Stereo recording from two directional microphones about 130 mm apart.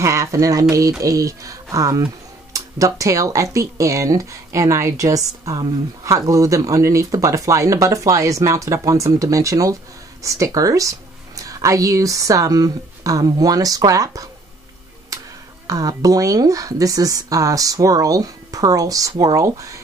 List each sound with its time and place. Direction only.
0.0 s speech: 25° right (ahead or behind)
15.6 s speech: 25° right (ahead or behind)